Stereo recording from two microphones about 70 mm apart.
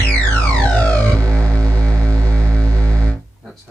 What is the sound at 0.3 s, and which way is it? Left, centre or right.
Music, centre.